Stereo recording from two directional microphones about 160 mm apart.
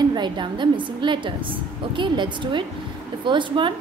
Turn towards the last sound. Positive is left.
turn(degrees=-30)  # may be behind; listen again after turning